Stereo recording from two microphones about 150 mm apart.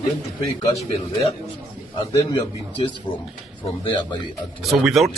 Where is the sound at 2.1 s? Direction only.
20° left (ahead or behind).